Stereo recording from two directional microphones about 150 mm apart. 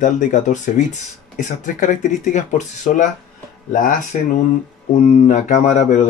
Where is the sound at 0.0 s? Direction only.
55° left (ahead or behind).